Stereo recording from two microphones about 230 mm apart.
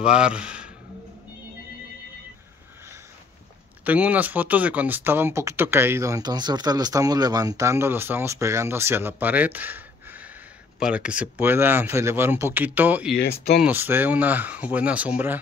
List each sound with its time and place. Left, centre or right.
0.0 s speech: centre
3.8 s speech: centre
13.2 s speech: left
13.6 s speech: centre